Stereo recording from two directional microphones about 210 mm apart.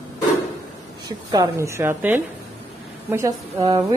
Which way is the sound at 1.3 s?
15° right (ahead or behind).